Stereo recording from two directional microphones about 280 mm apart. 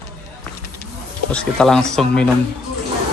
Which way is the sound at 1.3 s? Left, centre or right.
Centre.